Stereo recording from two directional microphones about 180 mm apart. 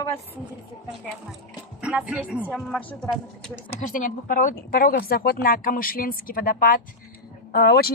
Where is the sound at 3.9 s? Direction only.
45° left (ahead or behind).